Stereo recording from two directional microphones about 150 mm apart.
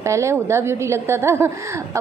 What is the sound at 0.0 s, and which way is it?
A woman's voice, 20° right (ahead or behind).